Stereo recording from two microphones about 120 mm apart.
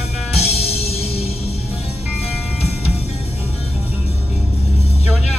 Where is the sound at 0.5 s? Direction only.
60° left (ahead or behind).